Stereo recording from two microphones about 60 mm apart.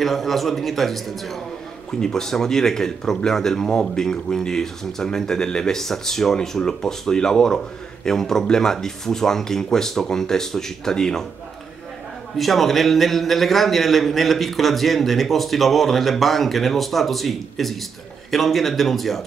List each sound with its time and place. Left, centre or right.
0.0 s a man's voice: centre
12.4 s a man's voice: centre